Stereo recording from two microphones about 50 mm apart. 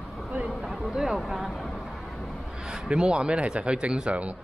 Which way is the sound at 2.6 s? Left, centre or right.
Centre.